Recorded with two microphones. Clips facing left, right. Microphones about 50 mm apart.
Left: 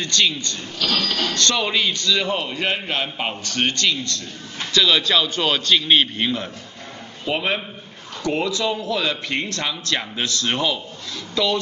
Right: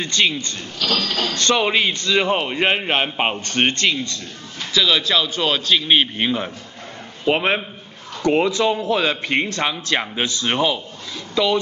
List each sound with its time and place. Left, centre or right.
0.0 s speech: right
0.8 s a sound: centre
1.1 s speech: right
4.7 s a man's voice: centre
7.2 s a man's voice: right